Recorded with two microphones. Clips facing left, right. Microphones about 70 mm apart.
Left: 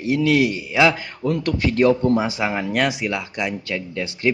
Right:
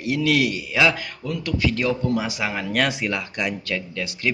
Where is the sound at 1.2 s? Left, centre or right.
Left.